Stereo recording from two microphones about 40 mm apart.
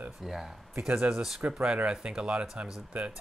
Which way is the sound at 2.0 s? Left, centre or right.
Right.